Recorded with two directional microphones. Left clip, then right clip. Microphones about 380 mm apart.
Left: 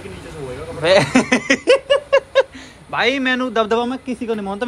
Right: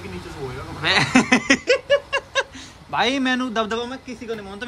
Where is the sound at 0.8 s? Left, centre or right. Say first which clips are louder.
Left 4 dB; centre.